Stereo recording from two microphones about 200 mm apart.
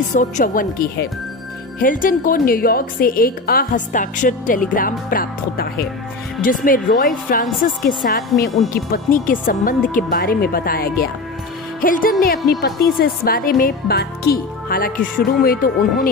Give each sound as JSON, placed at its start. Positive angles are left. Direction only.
{"t": 0.1, "sound": "a woman's voice", "side_deg": 40}